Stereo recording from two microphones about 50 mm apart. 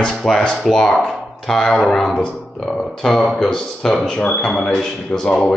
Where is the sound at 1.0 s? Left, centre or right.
Centre.